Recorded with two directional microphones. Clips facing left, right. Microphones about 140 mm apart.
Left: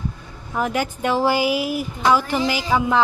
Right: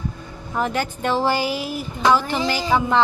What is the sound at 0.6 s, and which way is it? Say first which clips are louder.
Speech: left 1 dB; 5° left (ahead or behind).